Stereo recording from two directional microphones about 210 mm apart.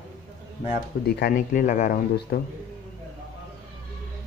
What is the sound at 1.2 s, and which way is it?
Speech, 40° left (ahead or behind).